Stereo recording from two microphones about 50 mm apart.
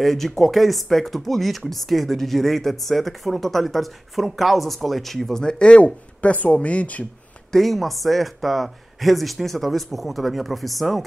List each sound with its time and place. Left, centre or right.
0.0 s speech: centre
5.4 s speech: centre
5.8 s speech: left
7.5 s speech: centre